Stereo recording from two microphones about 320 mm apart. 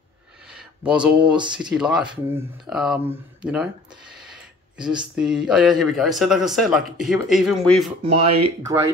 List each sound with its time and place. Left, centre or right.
0.5 s a sound: centre
1.1 s speech: centre
1.6 s speech: centre
8.0 s speech: centre